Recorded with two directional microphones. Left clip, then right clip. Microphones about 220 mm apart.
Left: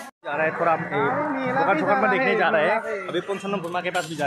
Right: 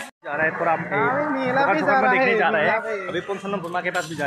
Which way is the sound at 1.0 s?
50° right (ahead or behind).